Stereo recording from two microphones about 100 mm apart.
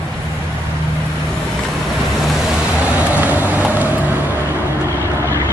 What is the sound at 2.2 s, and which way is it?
Vehicle, 5° right (ahead or behind).